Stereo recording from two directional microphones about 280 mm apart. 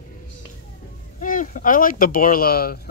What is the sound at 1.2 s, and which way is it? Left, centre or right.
Speech, left.